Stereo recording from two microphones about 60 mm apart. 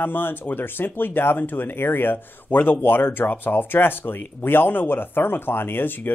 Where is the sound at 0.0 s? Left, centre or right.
Left.